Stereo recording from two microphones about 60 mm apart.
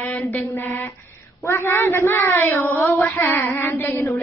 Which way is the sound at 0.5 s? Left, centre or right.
Left.